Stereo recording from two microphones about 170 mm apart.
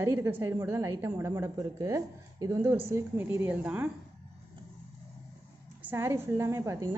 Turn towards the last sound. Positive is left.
turn(degrees=-20)  # may be behind; listen again after turning